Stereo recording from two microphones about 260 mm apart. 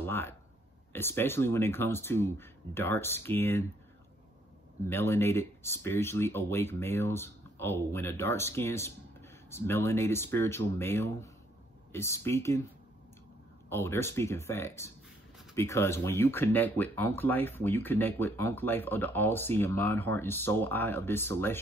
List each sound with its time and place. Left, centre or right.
0.0 s a sound: centre
0.9 s speech: centre
4.8 s speech: centre
13.7 s speech: centre